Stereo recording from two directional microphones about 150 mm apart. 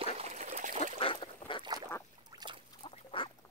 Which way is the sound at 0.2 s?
50° right (ahead or behind).